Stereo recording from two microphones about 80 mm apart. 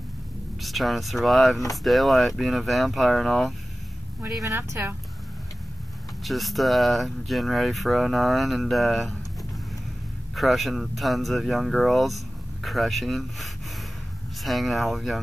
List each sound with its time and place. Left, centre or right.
0.6 s speech: centre
4.6 s speech: right
6.2 s speech: centre
10.3 s speech: centre